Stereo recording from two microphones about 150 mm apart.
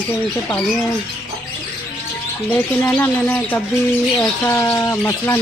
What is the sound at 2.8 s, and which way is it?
Speech, 15° left (ahead or behind).